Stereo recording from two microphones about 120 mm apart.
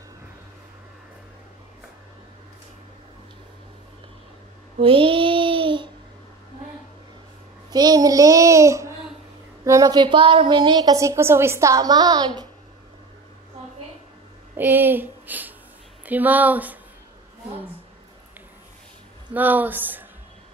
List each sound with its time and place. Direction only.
4.7 s child singing: 50° right (ahead or behind)
7.7 s a child's voice: 35° right (ahead or behind)
14.6 s speech: 15° right (ahead or behind)
19.3 s speech: 15° right (ahead or behind)